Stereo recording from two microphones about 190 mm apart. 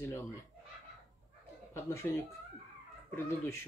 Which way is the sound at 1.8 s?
10° left (ahead or behind).